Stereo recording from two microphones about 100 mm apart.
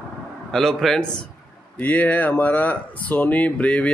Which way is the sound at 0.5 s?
5° left (ahead or behind).